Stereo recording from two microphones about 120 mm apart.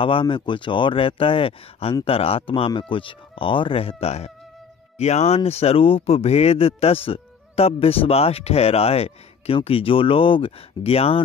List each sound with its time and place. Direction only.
0.0 s speech: 45° left (ahead or behind)